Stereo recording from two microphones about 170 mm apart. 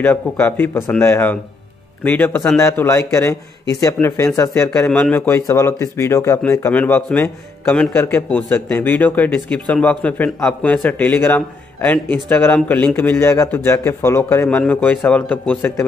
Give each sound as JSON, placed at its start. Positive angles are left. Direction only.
{"t": 0.0, "sound": "speech", "side_deg": 10}